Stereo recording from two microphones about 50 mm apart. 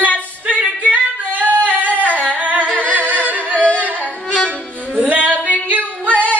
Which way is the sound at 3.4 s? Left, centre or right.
Left.